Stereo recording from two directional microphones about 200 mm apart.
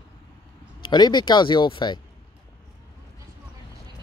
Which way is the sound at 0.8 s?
20° left (ahead or behind).